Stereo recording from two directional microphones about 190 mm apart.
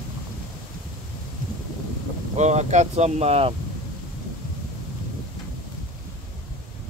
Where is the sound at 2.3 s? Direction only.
35° right (ahead or behind).